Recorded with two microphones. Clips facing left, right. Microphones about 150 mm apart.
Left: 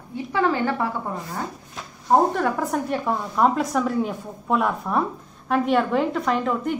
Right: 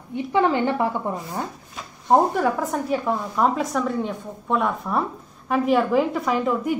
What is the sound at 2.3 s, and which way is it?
A woman's voice, centre (ahead or behind).